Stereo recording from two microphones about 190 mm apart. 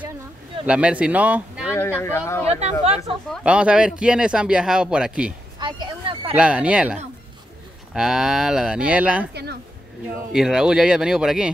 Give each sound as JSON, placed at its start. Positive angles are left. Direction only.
{"t": 0.7, "sound": "speech", "side_deg": -5}
{"t": 1.7, "sound": "speech", "side_deg": 10}
{"t": 2.4, "sound": "speech", "side_deg": -35}
{"t": 3.3, "sound": "speech", "side_deg": -5}
{"t": 5.6, "sound": "a sound", "side_deg": -25}
{"t": 6.3, "sound": "speech", "side_deg": -5}
{"t": 9.3, "sound": "speech", "side_deg": -60}
{"t": 10.3, "sound": "speech", "side_deg": -5}